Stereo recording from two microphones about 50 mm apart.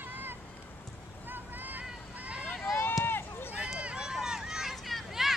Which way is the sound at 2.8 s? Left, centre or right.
Left.